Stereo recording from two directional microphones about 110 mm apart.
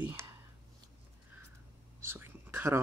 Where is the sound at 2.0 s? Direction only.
20° right (ahead or behind).